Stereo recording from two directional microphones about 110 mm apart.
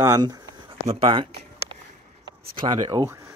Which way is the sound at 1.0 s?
50° right (ahead or behind).